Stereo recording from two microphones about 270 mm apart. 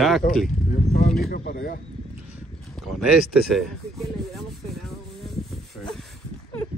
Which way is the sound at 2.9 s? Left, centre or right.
Centre.